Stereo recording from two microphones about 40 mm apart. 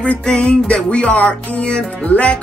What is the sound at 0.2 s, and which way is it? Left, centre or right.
Music, left.